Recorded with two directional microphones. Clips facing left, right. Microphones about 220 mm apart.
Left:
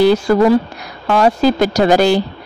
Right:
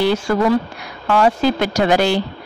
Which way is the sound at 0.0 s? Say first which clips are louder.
Left 5 dB; 35° left (ahead or behind).